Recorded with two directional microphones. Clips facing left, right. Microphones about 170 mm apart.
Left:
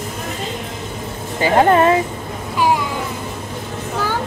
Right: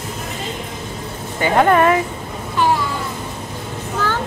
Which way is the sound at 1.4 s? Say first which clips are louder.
Left 1 dB; 30° left (ahead or behind).